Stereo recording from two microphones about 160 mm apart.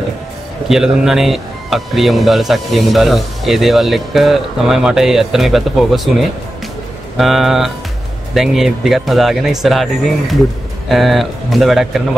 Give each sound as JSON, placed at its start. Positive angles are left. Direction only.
{"t": 0.7, "sound": "speech", "side_deg": -5}
{"t": 7.2, "sound": "speech", "side_deg": 0}